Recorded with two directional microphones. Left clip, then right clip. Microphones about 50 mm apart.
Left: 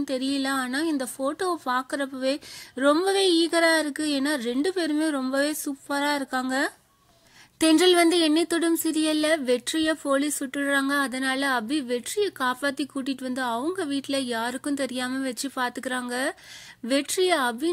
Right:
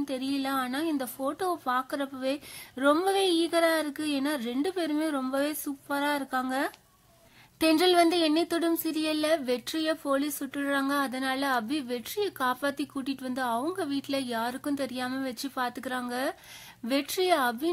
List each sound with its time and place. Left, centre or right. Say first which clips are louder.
0.0 s a woman's voice: left 4 dB; left
1.7 s a woman's voice: left 3 dB; left
7.6 s a woman's voice: left 3 dB; left